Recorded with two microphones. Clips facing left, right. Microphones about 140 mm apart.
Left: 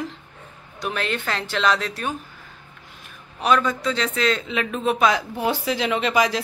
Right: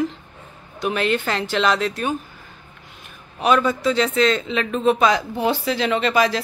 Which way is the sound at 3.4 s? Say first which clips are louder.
Right 2 dB; 5° right (ahead or behind).